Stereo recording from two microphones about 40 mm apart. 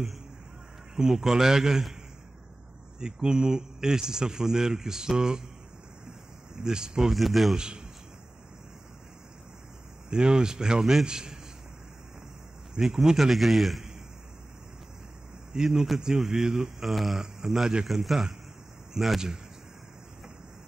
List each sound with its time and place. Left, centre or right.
0.9 s a man's voice: centre
3.0 s a man's voice: centre
6.5 s a man's voice: centre
7.2 s a man's voice: centre
7.5 s a man's voice: right
10.0 s a man's voice: right
12.8 s a man's voice: centre
15.5 s a man's voice: centre
16.8 s a man's voice: centre